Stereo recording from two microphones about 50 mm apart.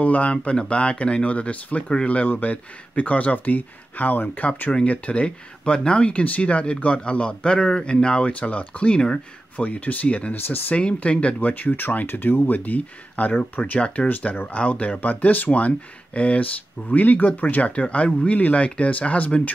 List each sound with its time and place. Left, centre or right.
0.0 s speech: left
4.7 s speech: left
9.6 s speech: left